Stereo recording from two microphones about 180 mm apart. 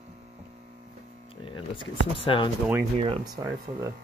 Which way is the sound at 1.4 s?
30° left (ahead or behind).